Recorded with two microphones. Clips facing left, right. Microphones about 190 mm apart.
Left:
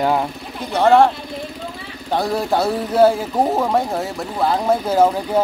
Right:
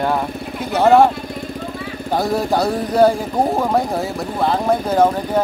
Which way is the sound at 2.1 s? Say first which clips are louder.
Right 1 dB; centre (ahead or behind).